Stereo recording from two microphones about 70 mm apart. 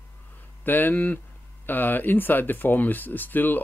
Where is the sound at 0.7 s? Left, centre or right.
Left.